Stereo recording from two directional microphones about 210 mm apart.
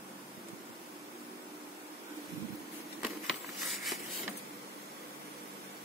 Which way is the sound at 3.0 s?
Centre (ahead or behind).